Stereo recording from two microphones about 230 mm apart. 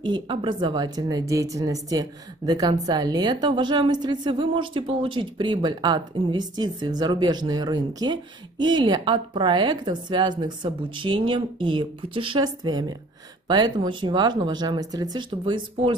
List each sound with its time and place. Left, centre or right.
0.0 s a woman's voice: centre